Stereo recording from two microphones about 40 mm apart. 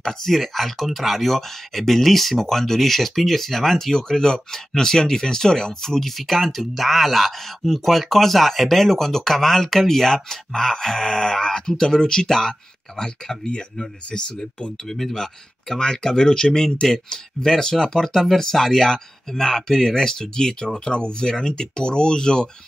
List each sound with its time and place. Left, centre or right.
0.0 s speech: centre; by 14.7 s left
14.9 s speech: centre